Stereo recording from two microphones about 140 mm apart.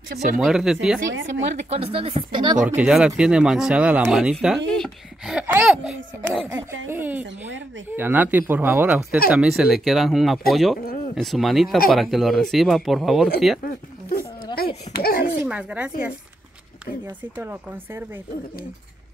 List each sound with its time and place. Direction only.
0.4 s speech: 5° right (ahead or behind)
1.0 s speech: 55° right (ahead or behind); by 2.6 s 35° right (ahead or behind)
2.6 s speech: 5° right (ahead or behind)
5.7 s speech: centre (ahead or behind)
6.5 s speech: 15° right (ahead or behind)
13.7 s a sound: 90° left
15.0 s a child's voice: 90° left
15.3 s speech: 10° right (ahead or behind)